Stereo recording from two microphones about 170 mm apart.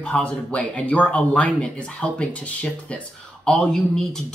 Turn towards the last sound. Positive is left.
turn(degrees=5)  # may be behind; listen again after turning